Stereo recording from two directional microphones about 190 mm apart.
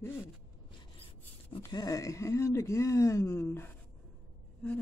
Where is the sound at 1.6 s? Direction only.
20° left (ahead or behind).